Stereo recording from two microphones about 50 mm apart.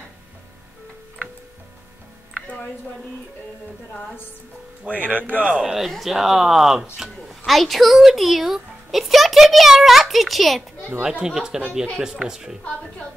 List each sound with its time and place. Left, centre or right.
4.8 s speech: right
5.9 s speech: centre
11.0 s speech: centre